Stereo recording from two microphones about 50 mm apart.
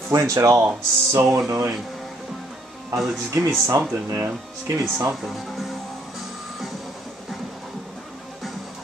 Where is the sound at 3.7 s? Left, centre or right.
Right.